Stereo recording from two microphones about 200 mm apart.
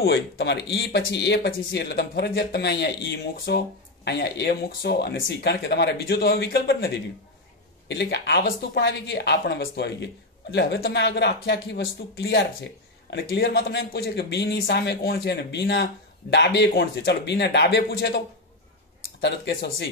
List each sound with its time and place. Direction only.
0.0 s speech: 55° left (ahead or behind)
19.2 s speech: 55° left (ahead or behind)